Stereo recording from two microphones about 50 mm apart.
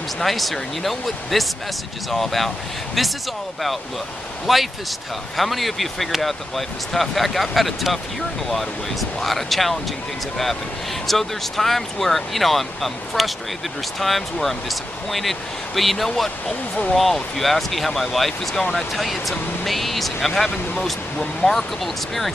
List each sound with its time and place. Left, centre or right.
0.2 s speech: centre
4.5 s speech: centre
9.2 s speech: centre